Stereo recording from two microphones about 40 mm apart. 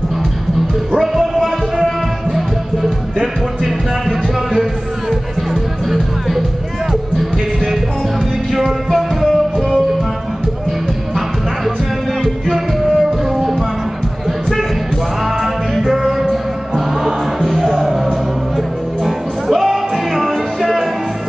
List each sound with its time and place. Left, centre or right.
0.9 s music: centre
5.9 s music: centre
12.2 s music: centre